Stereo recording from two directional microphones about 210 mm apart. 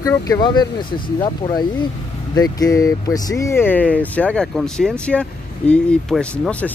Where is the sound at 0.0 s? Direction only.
20° left (ahead or behind).